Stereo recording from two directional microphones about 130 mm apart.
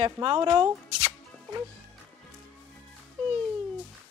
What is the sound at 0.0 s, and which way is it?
Speech, 35° right (ahead or behind).